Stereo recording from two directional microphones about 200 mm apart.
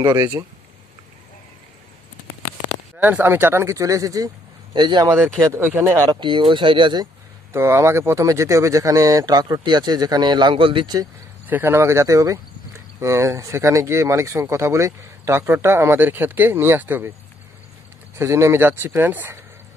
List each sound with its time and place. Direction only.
0.0 s speech: 20° right (ahead or behind)
3.0 s speech: 10° right (ahead or behind)
11.4 s speech: 10° right (ahead or behind)
18.1 s speech: 15° right (ahead or behind)